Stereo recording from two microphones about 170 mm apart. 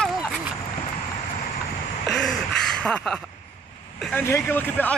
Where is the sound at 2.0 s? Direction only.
Centre (ahead or behind).